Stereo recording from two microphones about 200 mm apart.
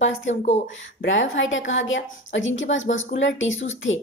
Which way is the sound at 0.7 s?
70° left (ahead or behind).